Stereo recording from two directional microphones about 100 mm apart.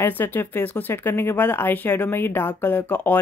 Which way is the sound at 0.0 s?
20° left (ahead or behind).